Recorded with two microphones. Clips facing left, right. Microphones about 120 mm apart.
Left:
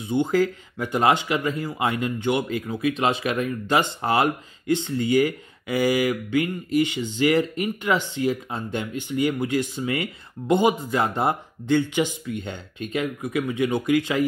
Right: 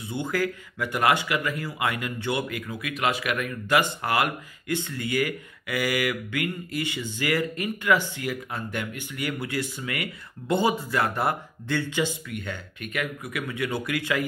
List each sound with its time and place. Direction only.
0.0 s speech: 20° left (ahead or behind)